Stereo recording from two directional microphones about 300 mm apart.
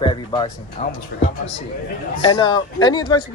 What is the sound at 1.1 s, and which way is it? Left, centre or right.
Speech, left.